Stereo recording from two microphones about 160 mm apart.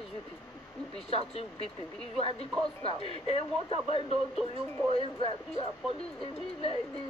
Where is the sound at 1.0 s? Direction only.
35° left (ahead or behind).